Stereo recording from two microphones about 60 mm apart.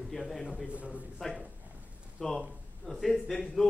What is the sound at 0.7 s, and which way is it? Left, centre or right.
Speech, right.